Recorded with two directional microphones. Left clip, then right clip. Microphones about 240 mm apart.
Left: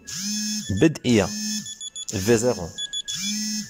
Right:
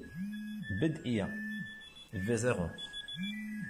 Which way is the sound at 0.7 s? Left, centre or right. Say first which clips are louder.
Left 15 dB; left.